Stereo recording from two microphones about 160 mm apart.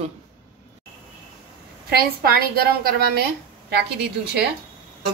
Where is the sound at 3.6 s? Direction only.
90° right.